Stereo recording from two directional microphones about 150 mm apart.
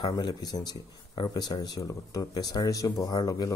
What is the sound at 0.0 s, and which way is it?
Speech, 25° left (ahead or behind).